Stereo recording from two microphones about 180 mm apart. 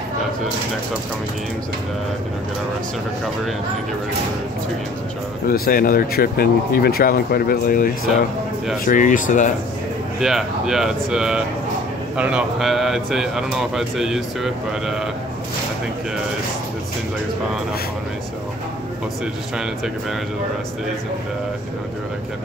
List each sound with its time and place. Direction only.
5.5 s speech: 55° left (ahead or behind)
10.2 s speech: centre (ahead or behind)
19.5 s speech: 5° right (ahead or behind)